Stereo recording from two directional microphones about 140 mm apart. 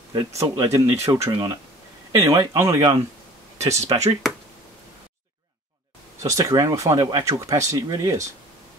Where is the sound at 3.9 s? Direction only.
45° right (ahead or behind).